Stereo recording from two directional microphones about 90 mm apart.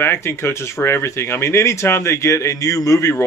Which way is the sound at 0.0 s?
25° left (ahead or behind).